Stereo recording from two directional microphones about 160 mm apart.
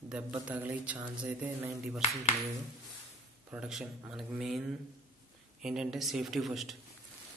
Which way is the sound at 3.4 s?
5° right (ahead or behind).